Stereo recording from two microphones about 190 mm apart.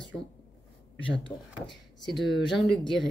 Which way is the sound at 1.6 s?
Centre (ahead or behind).